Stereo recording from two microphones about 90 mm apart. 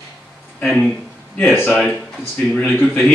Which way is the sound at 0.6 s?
10° left (ahead or behind).